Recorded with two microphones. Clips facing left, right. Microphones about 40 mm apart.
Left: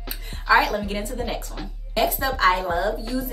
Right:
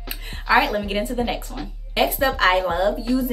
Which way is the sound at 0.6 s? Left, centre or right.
Centre.